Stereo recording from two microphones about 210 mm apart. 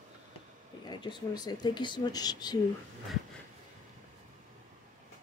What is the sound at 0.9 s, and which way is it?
Speech, 20° left (ahead or behind).